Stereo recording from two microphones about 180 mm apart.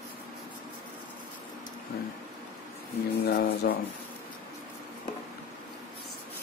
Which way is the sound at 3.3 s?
55° left (ahead or behind).